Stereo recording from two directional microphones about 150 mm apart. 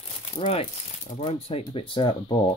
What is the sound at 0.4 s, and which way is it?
Speech, 40° left (ahead or behind).